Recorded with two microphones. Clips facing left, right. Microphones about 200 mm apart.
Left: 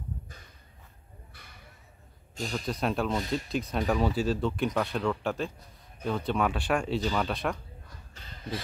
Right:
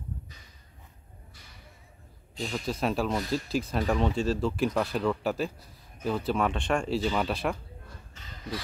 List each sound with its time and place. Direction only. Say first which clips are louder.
2.4 s speech: right 1 dB; centre (ahead or behind)